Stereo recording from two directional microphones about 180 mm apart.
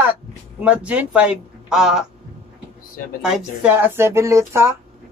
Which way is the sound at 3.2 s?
5° right (ahead or behind).